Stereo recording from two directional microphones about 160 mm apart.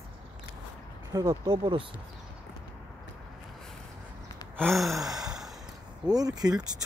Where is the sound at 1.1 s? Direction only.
20° right (ahead or behind).